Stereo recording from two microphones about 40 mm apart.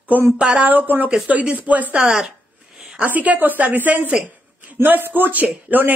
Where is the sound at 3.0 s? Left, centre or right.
Right.